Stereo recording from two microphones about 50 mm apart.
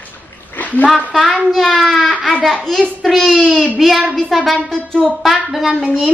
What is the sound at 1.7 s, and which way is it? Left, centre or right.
Baby cry, centre.